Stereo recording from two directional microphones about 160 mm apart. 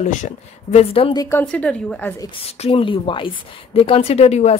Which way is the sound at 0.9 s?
35° left (ahead or behind).